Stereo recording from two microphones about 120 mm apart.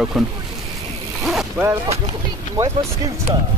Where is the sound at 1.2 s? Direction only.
5° right (ahead or behind).